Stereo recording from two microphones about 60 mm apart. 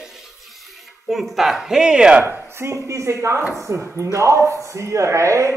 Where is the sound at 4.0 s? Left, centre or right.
Right.